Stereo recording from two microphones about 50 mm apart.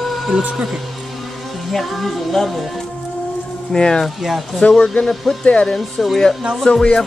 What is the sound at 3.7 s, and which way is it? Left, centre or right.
Speech, centre.